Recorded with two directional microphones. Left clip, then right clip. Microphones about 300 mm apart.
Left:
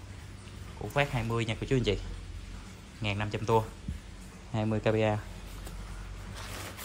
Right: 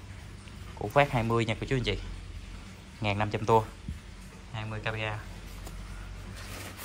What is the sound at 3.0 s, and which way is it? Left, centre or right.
Speech, centre.